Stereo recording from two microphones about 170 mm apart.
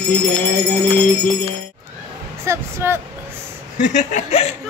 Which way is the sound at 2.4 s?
15° right (ahead or behind).